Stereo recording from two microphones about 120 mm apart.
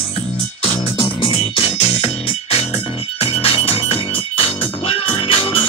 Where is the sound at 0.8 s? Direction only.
50° left (ahead or behind).